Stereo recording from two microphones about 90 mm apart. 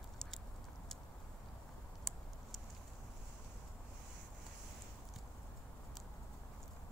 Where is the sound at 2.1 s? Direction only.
Centre (ahead or behind).